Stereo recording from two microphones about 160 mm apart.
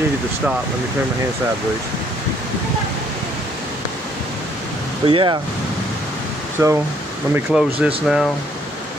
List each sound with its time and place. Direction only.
5.0 s speech: 30° right (ahead or behind)
6.6 s speech: 20° right (ahead or behind)
7.5 s speech: centre (ahead or behind)